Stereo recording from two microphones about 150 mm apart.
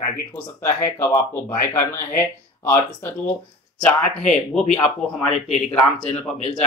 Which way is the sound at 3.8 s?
5° left (ahead or behind).